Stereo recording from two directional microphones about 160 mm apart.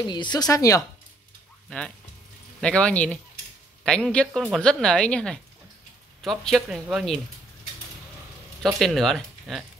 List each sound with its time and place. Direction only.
0.0 s speech: 25° left (ahead or behind)
1.7 s speech: 5° left (ahead or behind)
8.6 s speech: centre (ahead or behind)